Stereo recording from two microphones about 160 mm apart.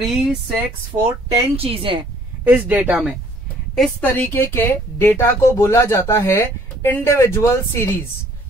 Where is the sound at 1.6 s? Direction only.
35° right (ahead or behind).